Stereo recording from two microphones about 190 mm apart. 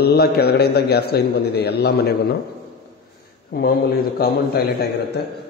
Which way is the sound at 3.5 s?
55° left (ahead or behind).